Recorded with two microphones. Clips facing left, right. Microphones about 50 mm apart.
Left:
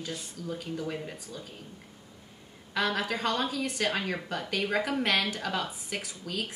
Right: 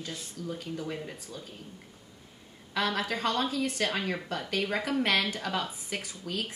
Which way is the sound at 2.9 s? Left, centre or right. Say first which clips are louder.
Even; centre.